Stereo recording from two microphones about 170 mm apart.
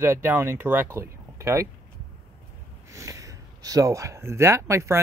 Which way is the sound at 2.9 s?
20° right (ahead or behind).